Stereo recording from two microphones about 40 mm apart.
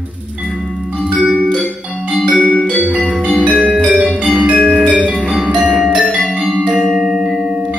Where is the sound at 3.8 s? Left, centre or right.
Right.